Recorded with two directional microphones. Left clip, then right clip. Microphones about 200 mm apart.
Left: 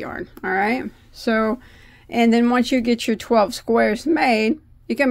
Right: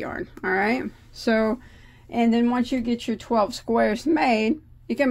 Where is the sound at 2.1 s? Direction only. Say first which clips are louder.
Left 5 dB; 30° left (ahead or behind).